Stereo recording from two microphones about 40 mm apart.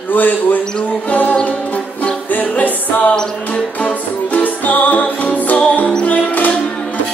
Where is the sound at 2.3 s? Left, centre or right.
Left.